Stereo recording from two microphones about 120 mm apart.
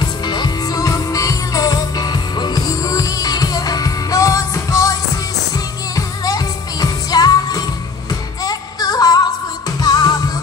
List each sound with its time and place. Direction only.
0.0 s music: 35° left (ahead or behind)
5.9 s music: 30° left (ahead or behind)